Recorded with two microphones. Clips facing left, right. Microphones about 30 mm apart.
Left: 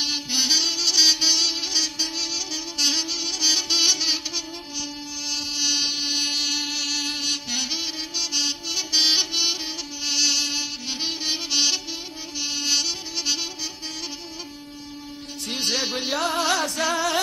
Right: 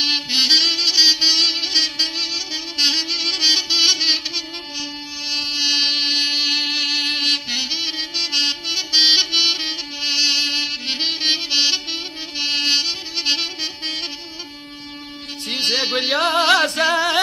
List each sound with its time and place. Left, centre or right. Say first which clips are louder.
0.0 s music: right 6 dB; right
5.3 s insect: right 6 dB; right
7.4 s music: right 5 dB; right
11.5 s music: right 2 dB; right
11.9 s music: right 6 dB; right
15.4 s music: right 5 dB; right